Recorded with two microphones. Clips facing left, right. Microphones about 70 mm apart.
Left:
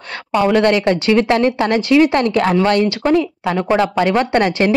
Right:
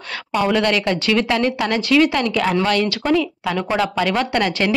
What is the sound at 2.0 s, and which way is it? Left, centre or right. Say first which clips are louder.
Speech: left 4 dB; left.